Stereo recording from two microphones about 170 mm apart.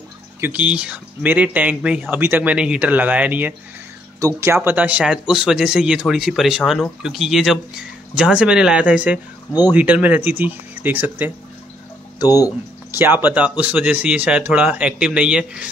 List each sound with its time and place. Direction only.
0.4 s speech: 10° right (ahead or behind)
12.2 s speech: 20° left (ahead or behind)
12.9 s speech: 10° right (ahead or behind)